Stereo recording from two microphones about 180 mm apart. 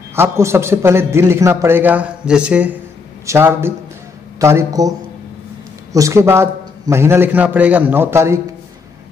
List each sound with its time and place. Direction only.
0.1 s a man's voice: 15° right (ahead or behind)
5.9 s a man's voice: 15° right (ahead or behind)